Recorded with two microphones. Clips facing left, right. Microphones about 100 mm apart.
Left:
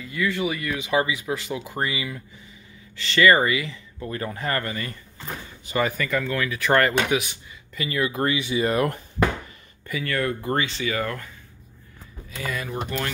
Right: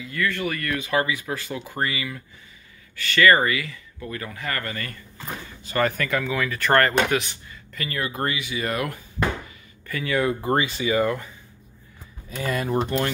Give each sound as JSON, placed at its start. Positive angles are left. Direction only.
{"t": 0.1, "sound": "speech", "side_deg": 10}
{"t": 5.7, "sound": "speech", "side_deg": 10}
{"t": 9.2, "sound": "a sound", "side_deg": 60}
{"t": 10.0, "sound": "speech", "side_deg": -10}
{"t": 12.4, "sound": "speech", "side_deg": -35}